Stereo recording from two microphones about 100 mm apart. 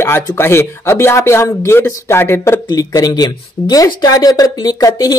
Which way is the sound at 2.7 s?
40° left (ahead or behind).